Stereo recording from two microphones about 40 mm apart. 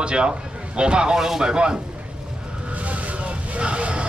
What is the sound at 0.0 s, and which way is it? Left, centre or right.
Speech, right.